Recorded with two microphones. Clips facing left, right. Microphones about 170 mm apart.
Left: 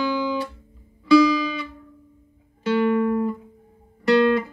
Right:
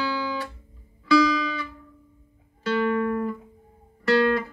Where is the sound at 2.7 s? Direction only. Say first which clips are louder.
Left 4 dB; 15° left (ahead or behind).